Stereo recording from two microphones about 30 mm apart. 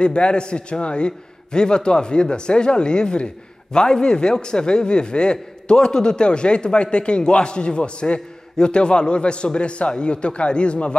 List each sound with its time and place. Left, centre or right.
0.0 s a man's voice: left